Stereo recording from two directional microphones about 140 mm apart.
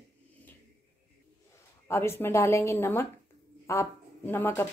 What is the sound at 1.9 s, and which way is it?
Speech, 15° left (ahead or behind).